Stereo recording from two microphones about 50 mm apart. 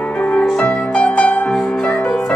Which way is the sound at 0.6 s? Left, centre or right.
Left.